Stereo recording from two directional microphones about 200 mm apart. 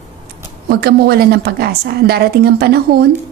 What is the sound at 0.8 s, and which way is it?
A woman's voice, 50° right (ahead or behind).